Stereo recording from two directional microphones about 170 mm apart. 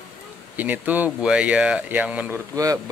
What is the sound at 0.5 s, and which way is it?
Speech, 10° right (ahead or behind).